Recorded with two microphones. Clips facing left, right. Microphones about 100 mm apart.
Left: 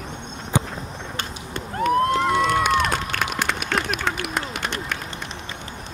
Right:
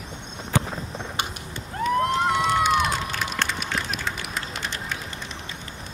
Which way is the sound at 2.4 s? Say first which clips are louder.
Left 1 dB; 60° left (ahead or behind).